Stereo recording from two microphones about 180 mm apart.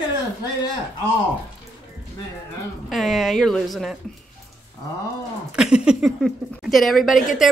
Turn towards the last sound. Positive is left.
turn(degrees=0)  # may be behind; listen again after turning